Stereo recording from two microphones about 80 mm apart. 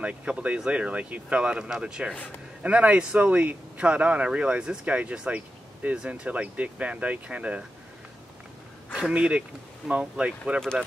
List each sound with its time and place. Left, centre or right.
0.0 s speech: centre
8.9 s speech: centre